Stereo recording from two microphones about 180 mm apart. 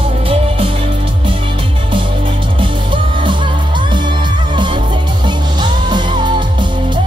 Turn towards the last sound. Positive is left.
turn(degrees=-25)  # may be behind; listen again after turning